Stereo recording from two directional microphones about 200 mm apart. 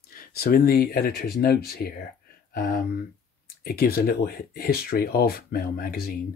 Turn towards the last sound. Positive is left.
turn(degrees=50)  # may be behind; listen again after turning